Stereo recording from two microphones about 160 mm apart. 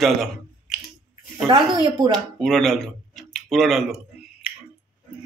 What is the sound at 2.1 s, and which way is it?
Speech, centre (ahead or behind).